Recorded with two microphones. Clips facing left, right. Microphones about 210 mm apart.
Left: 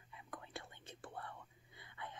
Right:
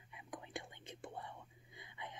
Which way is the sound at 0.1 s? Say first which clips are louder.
Right 3 dB; 15° right (ahead or behind).